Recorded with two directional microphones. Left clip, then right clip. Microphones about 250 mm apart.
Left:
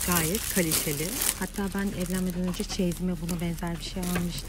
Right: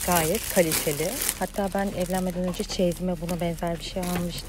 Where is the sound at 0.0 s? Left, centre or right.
Centre.